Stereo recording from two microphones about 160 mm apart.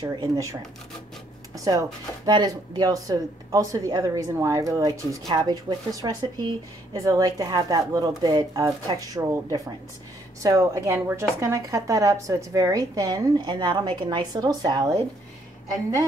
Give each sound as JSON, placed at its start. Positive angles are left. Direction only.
{"t": 0.0, "sound": "speech", "side_deg": -25}